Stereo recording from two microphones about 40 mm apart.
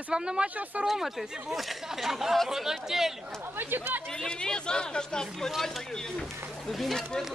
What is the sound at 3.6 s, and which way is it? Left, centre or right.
Speech, right.